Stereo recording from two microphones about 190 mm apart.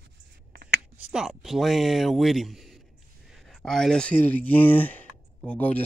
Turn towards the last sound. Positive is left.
turn(degrees=10)  # may be behind; listen again after turning